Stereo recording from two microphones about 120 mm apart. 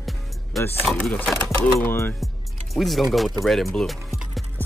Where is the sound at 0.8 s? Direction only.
10° left (ahead or behind).